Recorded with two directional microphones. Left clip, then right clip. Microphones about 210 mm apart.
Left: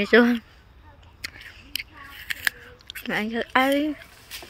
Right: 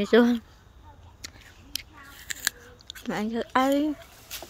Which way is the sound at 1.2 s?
5° right (ahead or behind).